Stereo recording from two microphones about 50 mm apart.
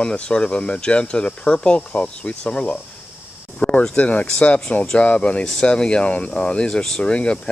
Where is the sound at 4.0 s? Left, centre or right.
Left.